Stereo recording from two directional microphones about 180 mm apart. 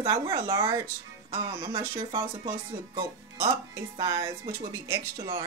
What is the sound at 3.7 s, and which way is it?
Speech, 20° right (ahead or behind).